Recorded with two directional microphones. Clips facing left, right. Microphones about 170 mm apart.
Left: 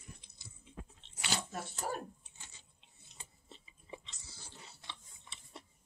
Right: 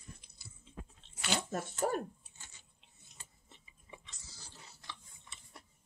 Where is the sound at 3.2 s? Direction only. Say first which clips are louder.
Left 4 dB; 25° left (ahead or behind).